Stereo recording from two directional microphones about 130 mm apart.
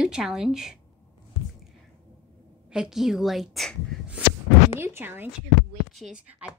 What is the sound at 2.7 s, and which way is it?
Speech, 5° right (ahead or behind).